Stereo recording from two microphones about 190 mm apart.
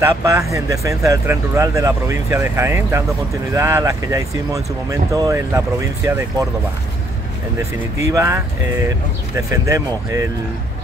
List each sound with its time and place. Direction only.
0.0 s speech: 15° right (ahead or behind)
8.0 s speech: 15° right (ahead or behind)
9.5 s speech: 15° right (ahead or behind)